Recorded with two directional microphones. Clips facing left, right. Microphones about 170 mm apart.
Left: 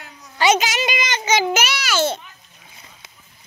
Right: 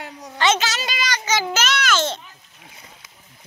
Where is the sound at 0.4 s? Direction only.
15° left (ahead or behind).